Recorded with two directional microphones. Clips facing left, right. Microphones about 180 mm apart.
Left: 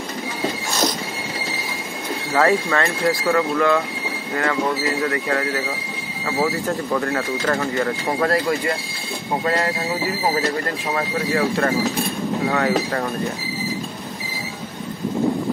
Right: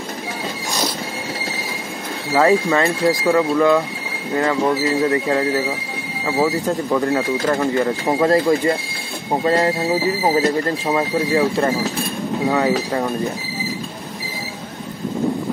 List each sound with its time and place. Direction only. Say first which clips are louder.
2.3 s speech: right 3 dB; 15° right (ahead or behind)
11.0 s speech: right 3 dB; 20° right (ahead or behind)